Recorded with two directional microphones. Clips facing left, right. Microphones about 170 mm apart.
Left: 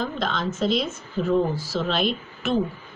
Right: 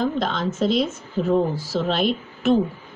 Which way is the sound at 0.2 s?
45° right (ahead or behind).